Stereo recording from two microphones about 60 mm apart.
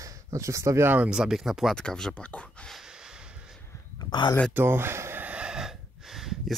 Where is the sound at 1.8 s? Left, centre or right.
Centre.